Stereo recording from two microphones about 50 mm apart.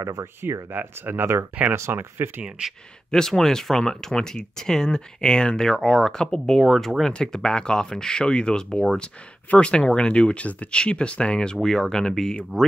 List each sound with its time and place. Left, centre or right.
0.0 s speech: right
0.4 s speech: right
3.1 s speech: centre
7.1 s speech: centre